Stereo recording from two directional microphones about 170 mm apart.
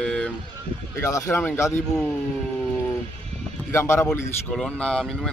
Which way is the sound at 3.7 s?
15° left (ahead or behind).